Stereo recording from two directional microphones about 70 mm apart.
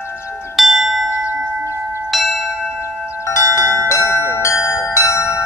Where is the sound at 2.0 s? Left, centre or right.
Centre.